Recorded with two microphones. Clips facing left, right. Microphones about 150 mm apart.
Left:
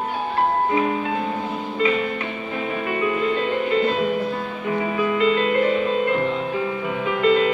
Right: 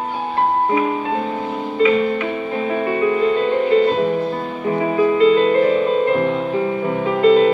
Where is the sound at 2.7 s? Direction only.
35° right (ahead or behind).